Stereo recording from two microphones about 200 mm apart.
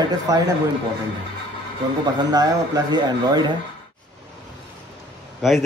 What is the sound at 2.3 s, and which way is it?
Speech, 20° right (ahead or behind).